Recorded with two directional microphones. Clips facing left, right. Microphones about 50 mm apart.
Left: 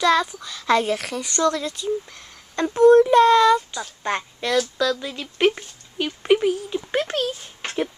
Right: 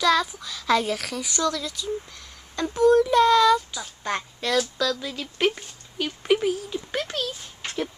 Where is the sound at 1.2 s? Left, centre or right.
Centre.